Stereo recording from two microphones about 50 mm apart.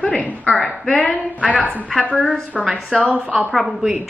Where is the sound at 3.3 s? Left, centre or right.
Centre.